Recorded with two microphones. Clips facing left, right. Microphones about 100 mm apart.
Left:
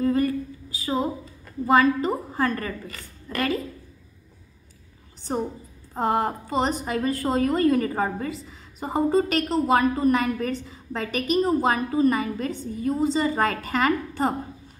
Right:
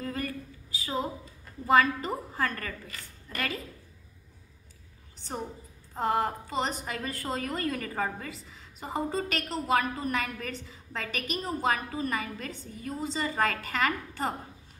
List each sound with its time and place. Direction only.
0.0 s a sound: 25° left (ahead or behind)
1.7 s a woman's voice: 20° left (ahead or behind)
5.9 s a woman's voice: 30° left (ahead or behind)